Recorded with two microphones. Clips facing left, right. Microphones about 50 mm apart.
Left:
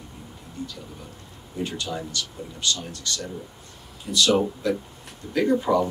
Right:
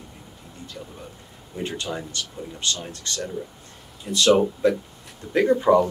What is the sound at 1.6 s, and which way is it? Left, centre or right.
Speech, right.